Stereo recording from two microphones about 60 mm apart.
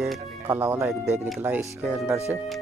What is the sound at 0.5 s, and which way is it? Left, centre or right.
Speech, right.